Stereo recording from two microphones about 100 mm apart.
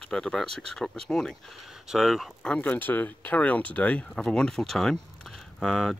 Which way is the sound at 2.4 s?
15° left (ahead or behind).